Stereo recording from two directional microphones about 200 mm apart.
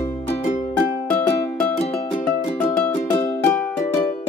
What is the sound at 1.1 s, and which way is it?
Music, 5° left (ahead or behind).